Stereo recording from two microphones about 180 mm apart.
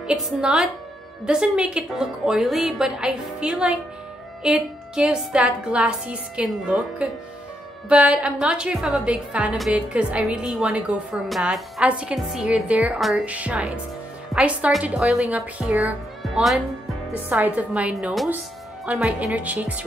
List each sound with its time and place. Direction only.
0.0 s a woman's voice: 5° right (ahead or behind)